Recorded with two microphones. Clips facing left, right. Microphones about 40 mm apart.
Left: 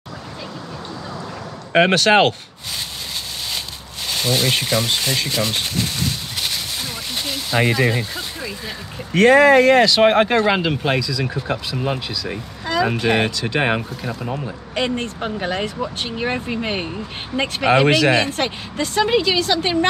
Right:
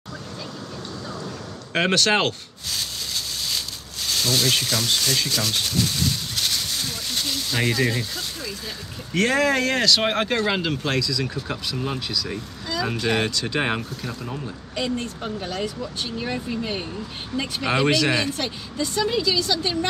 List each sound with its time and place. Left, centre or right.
1.7 s speech: left
4.1 s speech: left
6.3 s a sound: centre
7.2 s speech: centre
14.8 s speech: left
17.6 s speech: centre
18.3 s speech: left